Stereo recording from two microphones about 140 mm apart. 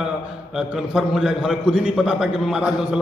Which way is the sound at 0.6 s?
5° right (ahead or behind).